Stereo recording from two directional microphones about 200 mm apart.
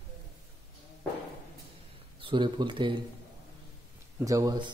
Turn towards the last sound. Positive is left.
turn(degrees=-20)  # may be behind; listen again after turning